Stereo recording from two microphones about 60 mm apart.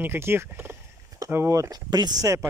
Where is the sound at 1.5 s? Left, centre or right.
Right.